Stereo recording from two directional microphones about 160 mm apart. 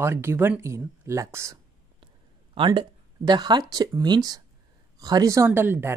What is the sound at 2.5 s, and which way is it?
Speech, 30° right (ahead or behind).